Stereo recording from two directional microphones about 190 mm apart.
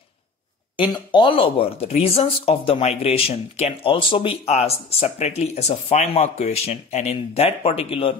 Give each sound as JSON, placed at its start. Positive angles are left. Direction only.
{"t": 0.7, "sound": "speech", "side_deg": 25}